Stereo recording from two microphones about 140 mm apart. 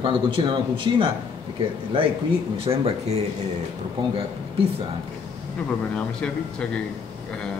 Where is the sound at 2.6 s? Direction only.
45° right (ahead or behind).